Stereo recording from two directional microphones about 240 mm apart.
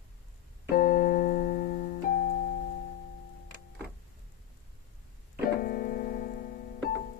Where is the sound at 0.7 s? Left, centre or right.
Left.